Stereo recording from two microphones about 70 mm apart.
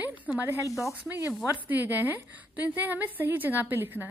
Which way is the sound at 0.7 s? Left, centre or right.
Left.